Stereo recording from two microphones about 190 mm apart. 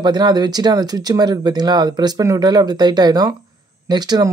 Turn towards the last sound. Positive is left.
turn(degrees=-20)  # may be behind; listen again after turning